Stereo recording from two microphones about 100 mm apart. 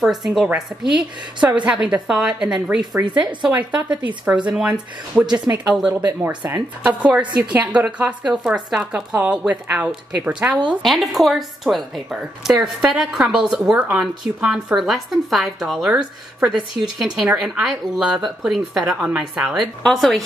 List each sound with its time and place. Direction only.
0.0 s a woman's voice: 5° right (ahead or behind)
5.5 s speech: 20° right (ahead or behind)
5.8 s speech: 10° right (ahead or behind)
10.8 s a woman's voice: centre (ahead or behind)